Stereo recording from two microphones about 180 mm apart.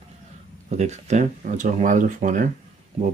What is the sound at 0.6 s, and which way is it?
Speech, 40° right (ahead or behind).